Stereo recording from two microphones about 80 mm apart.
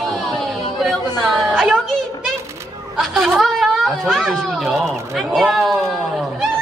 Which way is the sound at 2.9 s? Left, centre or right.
Centre.